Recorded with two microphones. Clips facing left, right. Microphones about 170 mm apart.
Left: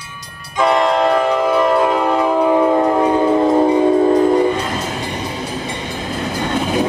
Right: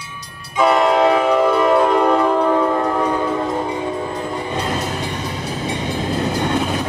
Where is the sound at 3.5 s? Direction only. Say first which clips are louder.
Left 10 dB; 40° left (ahead or behind).